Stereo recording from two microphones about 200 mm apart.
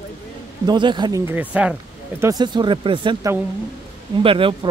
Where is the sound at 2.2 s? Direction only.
20° right (ahead or behind).